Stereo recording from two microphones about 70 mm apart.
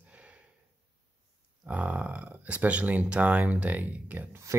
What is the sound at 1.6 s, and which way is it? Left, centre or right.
Speech, centre.